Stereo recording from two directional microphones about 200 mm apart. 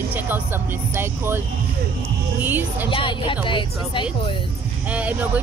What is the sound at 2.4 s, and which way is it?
Speech, 10° right (ahead or behind).